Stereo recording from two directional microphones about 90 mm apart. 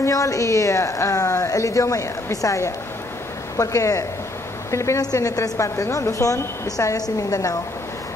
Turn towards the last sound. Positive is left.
turn(degrees=40)  # may be behind; listen again after turning